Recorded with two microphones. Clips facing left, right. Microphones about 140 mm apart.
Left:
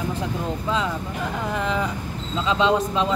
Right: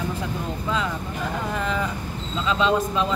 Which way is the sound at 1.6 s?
15° left (ahead or behind).